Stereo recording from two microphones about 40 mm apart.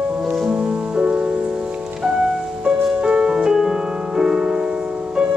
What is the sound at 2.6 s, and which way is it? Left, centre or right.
Music, right.